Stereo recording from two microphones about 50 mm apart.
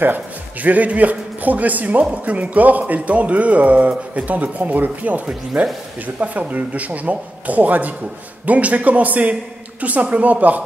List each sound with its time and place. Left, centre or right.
0.0 s a man's voice: right